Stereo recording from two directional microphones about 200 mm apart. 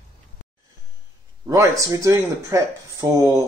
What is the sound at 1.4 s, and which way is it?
Speech, 15° right (ahead or behind).